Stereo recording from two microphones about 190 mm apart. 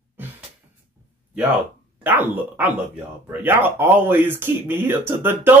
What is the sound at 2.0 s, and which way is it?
Speech, 10° right (ahead or behind).